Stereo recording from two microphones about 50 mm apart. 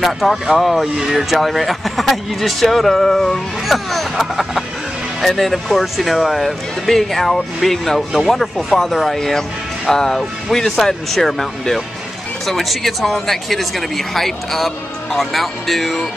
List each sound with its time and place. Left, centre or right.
0.0 s speech: centre